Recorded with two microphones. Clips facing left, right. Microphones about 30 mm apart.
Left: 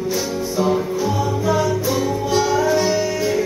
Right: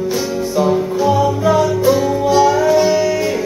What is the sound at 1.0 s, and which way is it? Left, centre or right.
Music, right.